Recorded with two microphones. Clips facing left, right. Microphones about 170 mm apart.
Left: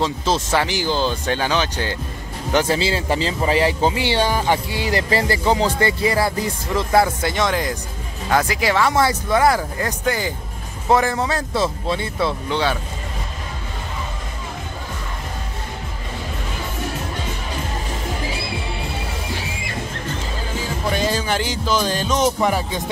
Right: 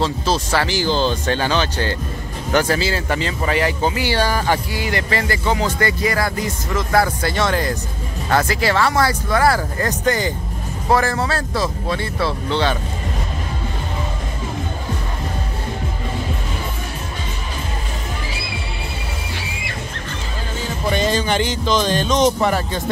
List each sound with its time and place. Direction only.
0.0 s speech: 20° left (ahead or behind)
2.5 s speech: 25° left (ahead or behind)
4.8 s speech: 35° left (ahead or behind)
9.8 s speech: 10° left (ahead or behind)
20.9 s speech: 5° left (ahead or behind)